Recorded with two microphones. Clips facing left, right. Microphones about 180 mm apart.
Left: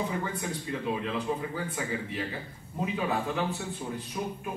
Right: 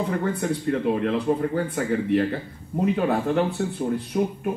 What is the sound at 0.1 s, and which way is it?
A man's voice, 60° right (ahead or behind).